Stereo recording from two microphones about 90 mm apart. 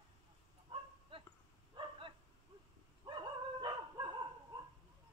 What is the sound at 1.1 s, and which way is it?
Dog, 90° right.